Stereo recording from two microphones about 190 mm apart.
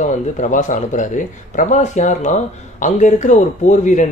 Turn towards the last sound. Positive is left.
turn(degrees=40)  # may be behind; listen again after turning